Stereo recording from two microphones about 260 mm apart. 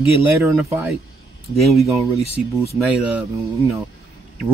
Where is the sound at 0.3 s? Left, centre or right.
Centre.